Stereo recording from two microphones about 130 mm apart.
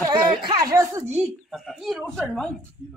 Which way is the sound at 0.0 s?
35° right (ahead or behind).